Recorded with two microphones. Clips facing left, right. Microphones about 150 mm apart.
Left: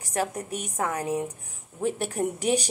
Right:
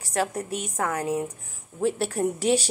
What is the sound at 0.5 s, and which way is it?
A woman's voice, 15° left (ahead or behind).